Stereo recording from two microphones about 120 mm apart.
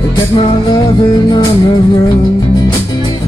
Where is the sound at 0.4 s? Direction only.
40° left (ahead or behind).